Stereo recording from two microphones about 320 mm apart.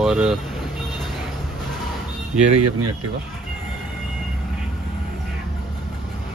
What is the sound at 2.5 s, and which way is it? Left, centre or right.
Speech, right.